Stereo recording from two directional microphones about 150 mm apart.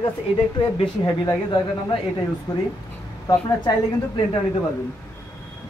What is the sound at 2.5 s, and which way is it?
Speech, 25° left (ahead or behind).